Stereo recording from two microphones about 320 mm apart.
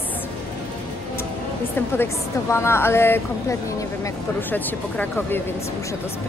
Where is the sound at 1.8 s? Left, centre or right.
Centre.